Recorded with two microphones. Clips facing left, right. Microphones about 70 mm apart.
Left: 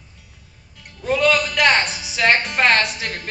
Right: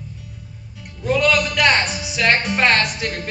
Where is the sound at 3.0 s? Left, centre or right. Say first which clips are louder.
Right 3 dB; centre.